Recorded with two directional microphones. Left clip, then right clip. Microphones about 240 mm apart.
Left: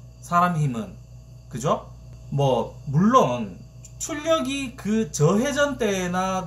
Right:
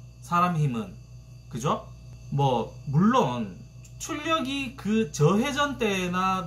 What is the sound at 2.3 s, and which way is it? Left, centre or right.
Speech, centre.